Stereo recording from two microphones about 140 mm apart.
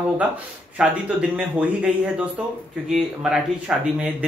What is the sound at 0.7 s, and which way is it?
Speech, 5° right (ahead or behind).